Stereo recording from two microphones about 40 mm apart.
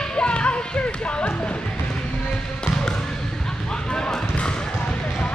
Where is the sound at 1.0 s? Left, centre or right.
Left.